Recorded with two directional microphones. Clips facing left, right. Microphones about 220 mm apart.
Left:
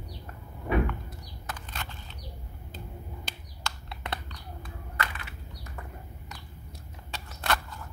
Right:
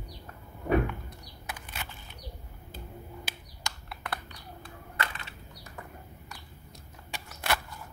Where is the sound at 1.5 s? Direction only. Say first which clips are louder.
Left 1 dB; 10° right (ahead or behind).